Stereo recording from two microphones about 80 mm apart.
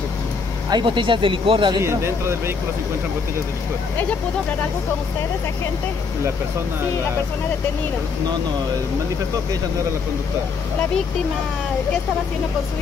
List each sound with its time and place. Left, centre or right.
0.7 s speech: right
1.8 s speech: right